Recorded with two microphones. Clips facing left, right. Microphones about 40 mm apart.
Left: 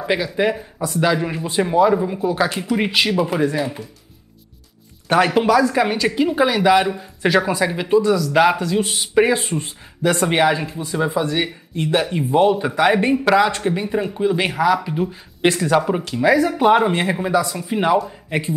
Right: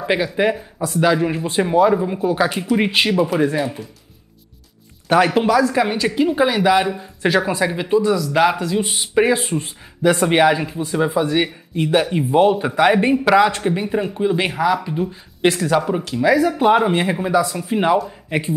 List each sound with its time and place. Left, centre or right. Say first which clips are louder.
0.4 s speech: right 1 dB; right
1.0 s speech: right 3 dB; centre
5.0 s speech: right 1 dB; centre
8.0 s speech: even; centre
8.3 s speech: left 1 dB; centre
14.9 s speech: even; centre